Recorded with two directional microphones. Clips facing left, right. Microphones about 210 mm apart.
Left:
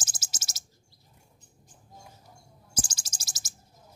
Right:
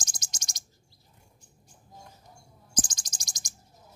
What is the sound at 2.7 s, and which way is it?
Bird, 10° left (ahead or behind).